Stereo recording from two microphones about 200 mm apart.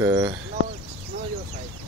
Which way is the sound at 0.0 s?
10° right (ahead or behind).